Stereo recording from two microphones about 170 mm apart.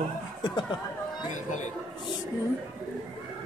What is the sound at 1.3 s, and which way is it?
Speech, 45° left (ahead or behind).